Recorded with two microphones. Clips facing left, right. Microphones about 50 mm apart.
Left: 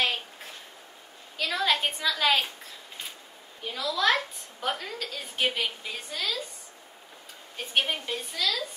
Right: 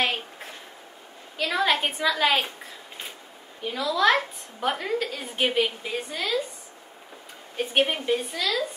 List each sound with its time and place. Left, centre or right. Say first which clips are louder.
1.4 s a woman's voice: right 3 dB; centre
3.6 s a woman's voice: right 4 dB; centre
7.5 s a woman's voice: right 5 dB; right